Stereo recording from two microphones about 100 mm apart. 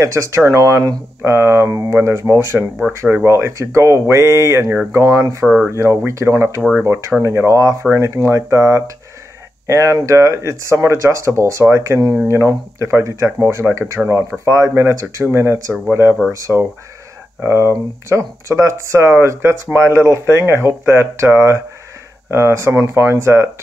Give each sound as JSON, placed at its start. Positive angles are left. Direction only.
{"t": 0.0, "sound": "speech", "side_deg": -30}